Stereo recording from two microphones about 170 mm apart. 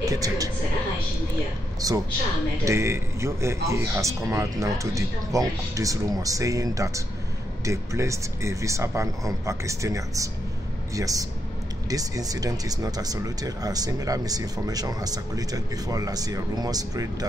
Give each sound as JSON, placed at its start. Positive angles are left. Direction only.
{"t": 0.0, "sound": "speech", "side_deg": -20}
{"t": 1.8, "sound": "a man's voice", "side_deg": -20}